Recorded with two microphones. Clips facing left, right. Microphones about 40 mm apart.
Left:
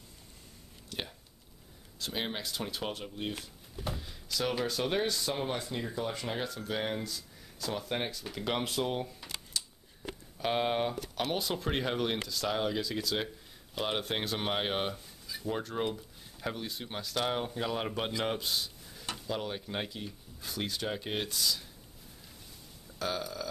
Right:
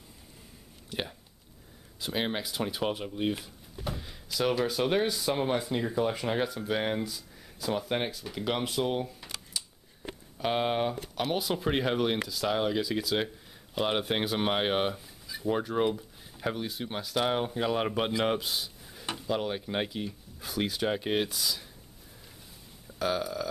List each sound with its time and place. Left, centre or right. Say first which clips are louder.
0.8 s speech: right 4 dB; centre
9.5 s a sound: even; centre
11.3 s speech: right 6 dB; centre
22.9 s speech: right 5 dB; centre